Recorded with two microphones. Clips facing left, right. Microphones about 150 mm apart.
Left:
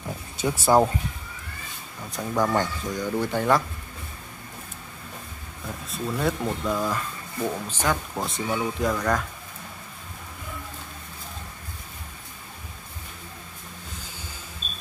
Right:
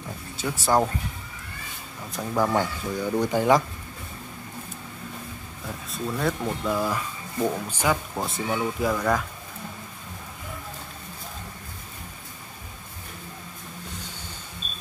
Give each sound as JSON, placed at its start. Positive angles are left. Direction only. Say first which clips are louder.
{"t": 0.4, "sound": "speech", "louder": "left 3 dB", "side_deg": 15}
{"t": 2.1, "sound": "speech", "louder": "even", "side_deg": -5}
{"t": 5.9, "sound": "speech", "louder": "left 1 dB", "side_deg": 0}